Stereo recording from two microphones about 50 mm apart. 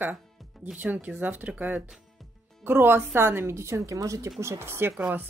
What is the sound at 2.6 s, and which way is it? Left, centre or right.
Speech, right.